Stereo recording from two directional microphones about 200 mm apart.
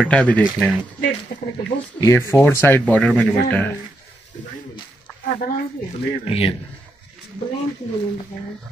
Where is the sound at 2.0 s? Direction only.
15° left (ahead or behind).